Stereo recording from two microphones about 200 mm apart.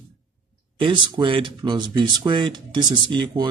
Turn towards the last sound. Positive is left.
turn(degrees=-20)  # may be behind; listen again after turning